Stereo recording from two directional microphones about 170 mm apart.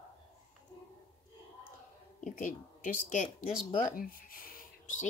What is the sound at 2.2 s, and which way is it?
Speech, 50° left (ahead or behind).